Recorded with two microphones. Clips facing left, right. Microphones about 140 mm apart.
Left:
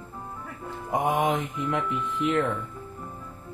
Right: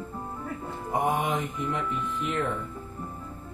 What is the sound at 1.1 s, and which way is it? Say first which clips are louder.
Mantra: left 3 dB; 80° left.